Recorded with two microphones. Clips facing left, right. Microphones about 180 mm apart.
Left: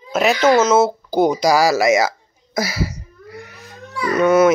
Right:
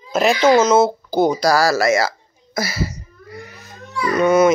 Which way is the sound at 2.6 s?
10° left (ahead or behind).